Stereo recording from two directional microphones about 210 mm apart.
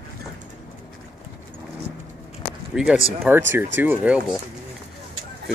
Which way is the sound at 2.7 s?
Centre (ahead or behind).